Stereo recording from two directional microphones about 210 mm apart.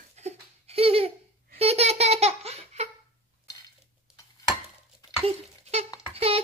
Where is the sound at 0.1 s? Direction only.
30° right (ahead or behind).